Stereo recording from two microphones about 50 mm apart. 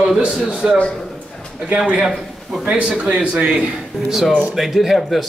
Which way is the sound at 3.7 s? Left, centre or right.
Centre.